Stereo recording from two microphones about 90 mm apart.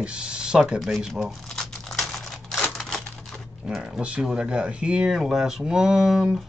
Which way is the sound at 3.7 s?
5° right (ahead or behind).